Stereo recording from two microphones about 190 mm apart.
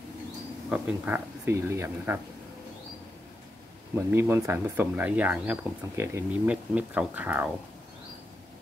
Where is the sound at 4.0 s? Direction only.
10° right (ahead or behind).